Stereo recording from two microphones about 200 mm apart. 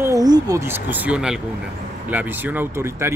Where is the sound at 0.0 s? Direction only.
20° right (ahead or behind).